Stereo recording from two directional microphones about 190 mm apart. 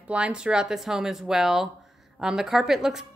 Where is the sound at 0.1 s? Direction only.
5° right (ahead or behind).